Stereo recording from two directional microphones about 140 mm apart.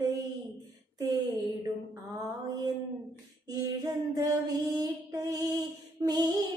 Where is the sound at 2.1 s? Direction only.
30° right (ahead or behind).